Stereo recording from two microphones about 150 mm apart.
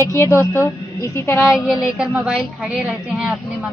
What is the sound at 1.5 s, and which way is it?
A woman's voice, 5° right (ahead or behind).